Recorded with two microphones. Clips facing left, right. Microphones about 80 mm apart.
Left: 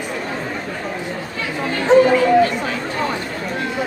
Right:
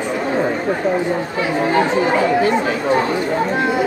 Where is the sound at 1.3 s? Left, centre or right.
Right.